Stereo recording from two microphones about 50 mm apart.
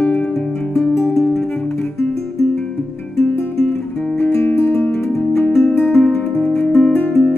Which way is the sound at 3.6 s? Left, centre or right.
Centre.